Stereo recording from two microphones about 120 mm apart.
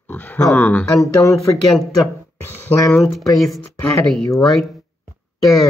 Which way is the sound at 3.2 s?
Centre (ahead or behind).